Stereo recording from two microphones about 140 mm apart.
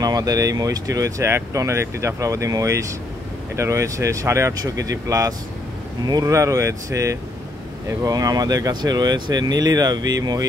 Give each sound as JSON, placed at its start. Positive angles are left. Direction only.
{"t": 0.0, "sound": "speech", "side_deg": -25}